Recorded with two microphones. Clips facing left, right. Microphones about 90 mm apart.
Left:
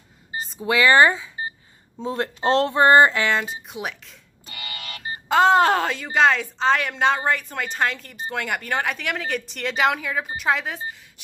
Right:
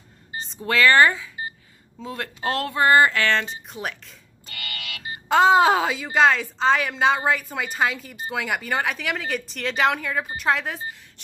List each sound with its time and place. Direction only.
0.5 s speech: 10° left (ahead or behind)
4.5 s a sound: 20° left (ahead or behind)
4.8 s music: 35° left (ahead or behind)
5.3 s speech: centre (ahead or behind)